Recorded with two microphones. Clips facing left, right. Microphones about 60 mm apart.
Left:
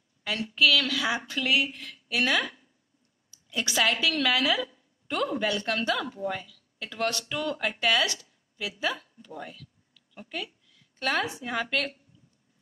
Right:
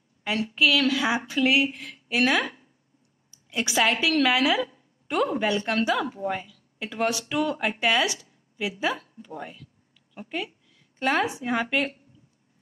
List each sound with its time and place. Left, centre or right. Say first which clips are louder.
0.5 s a woman's voice: right 2 dB; right
5.8 s speech: right 4 dB; centre
6.0 s a woman's voice: right 3 dB; centre